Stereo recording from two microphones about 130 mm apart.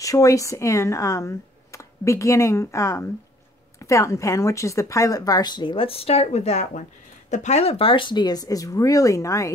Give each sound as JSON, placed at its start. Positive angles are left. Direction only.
{"t": 0.0, "sound": "speech", "side_deg": 25}